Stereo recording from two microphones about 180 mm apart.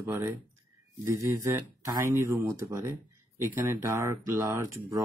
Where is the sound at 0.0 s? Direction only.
15° right (ahead or behind).